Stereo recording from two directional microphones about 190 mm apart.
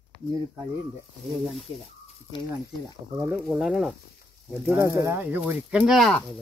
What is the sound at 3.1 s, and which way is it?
Speech, 15° right (ahead or behind).